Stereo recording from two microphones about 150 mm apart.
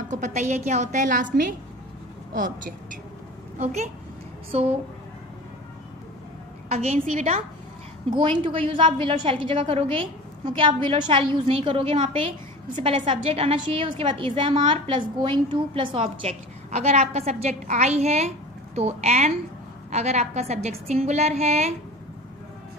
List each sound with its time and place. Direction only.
0.1 s a woman's voice: 50° right (ahead or behind)
3.5 s a woman's voice: 50° right (ahead or behind)
6.7 s a woman's voice: 45° right (ahead or behind)
8.1 s a woman's voice: 35° right (ahead or behind)